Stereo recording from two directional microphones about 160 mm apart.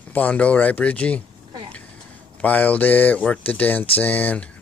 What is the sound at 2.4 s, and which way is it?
Rub, 10° left (ahead or behind).